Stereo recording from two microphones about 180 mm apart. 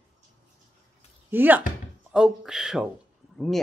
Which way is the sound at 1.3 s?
10° right (ahead or behind).